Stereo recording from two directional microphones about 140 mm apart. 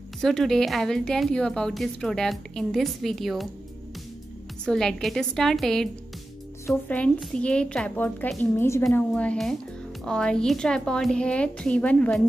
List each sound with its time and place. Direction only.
0.2 s speech: 5° left (ahead or behind)
4.6 s speech: 5° left (ahead or behind)
6.6 s a woman's voice: 15° left (ahead or behind)